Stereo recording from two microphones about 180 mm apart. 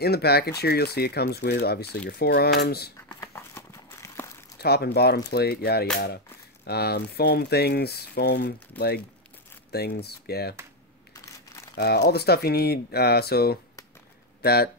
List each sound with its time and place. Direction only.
0.0 s speech: 60° left (ahead or behind)
3.2 s a sound: 15° left (ahead or behind)
4.6 s speech: 65° left (ahead or behind)
11.1 s crumpling: 15° left (ahead or behind)
11.7 s speech: 65° left (ahead or behind)